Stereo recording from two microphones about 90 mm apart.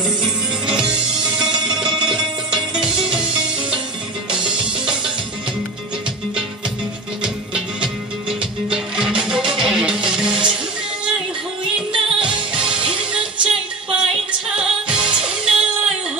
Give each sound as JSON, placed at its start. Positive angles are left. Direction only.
{"t": 0.0, "sound": "music", "side_deg": -10}
{"t": 7.5, "sound": "music", "side_deg": -10}